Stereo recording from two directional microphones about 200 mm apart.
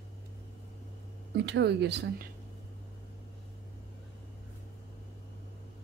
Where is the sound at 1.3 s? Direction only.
60° right (ahead or behind).